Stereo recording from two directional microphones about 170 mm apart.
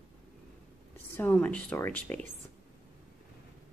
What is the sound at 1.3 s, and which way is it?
Speech, 10° left (ahead or behind).